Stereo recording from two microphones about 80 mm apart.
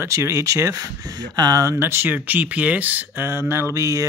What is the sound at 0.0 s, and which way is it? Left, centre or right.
Speech, right.